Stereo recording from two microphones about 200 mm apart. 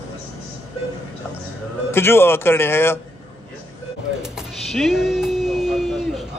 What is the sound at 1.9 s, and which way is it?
Speech, 10° left (ahead or behind).